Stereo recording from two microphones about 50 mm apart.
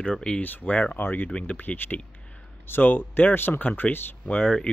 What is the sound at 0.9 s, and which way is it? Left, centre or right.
Speech, left.